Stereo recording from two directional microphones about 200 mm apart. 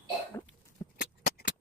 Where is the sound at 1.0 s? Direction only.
50° left (ahead or behind).